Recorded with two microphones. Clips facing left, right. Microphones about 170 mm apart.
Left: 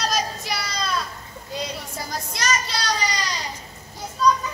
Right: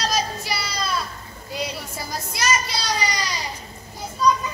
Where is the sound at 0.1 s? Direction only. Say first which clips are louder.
Right 1 dB; 5° right (ahead or behind).